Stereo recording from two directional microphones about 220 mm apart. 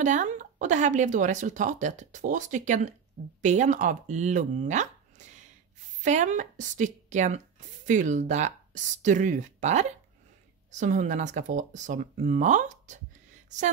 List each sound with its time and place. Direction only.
0.0 s a woman's voice: 35° right (ahead or behind)